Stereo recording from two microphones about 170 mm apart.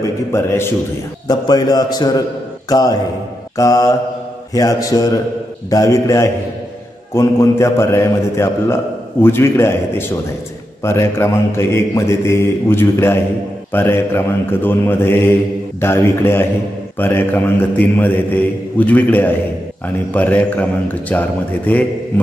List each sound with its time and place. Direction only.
0.0 s a man's voice: 15° left (ahead or behind)